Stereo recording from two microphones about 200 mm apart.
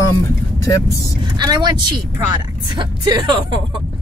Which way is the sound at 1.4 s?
20° right (ahead or behind).